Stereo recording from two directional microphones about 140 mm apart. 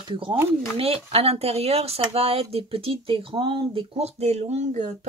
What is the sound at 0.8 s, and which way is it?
Speech, 45° right (ahead or behind).